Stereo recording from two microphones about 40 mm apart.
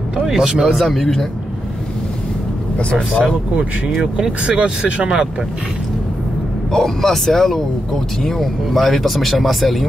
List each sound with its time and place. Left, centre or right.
0.3 s speech: centre
0.7 s speech: centre
4.0 s speech: right
6.7 s speech: centre